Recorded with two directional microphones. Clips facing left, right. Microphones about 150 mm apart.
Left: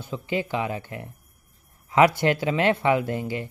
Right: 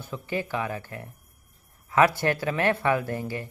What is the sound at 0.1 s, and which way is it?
Speech, 20° left (ahead or behind).